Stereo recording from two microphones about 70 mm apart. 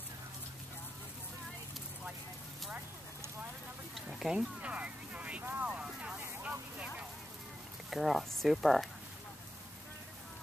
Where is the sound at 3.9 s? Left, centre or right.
Centre.